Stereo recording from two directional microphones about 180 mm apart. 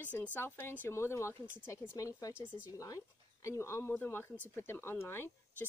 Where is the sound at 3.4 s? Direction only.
15° left (ahead or behind).